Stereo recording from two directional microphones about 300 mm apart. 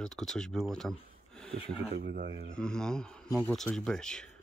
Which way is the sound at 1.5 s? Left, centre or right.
Right.